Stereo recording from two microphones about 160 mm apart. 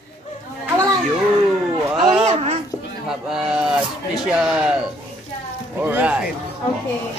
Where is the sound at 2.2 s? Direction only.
40° right (ahead or behind).